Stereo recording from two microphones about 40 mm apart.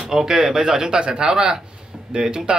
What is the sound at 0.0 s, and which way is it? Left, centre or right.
A man's voice, centre.